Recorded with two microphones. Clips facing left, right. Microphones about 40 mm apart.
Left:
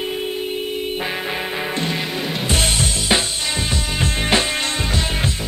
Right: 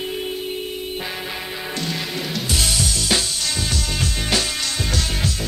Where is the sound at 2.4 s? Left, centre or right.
Left.